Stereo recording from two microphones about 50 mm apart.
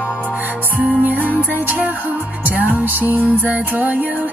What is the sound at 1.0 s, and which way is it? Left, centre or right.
Music, right.